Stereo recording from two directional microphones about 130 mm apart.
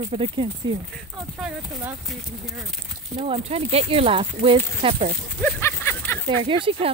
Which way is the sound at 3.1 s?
50° right (ahead or behind).